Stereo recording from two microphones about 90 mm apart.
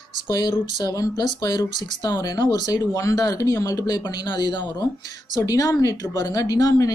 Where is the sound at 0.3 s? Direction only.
40° left (ahead or behind).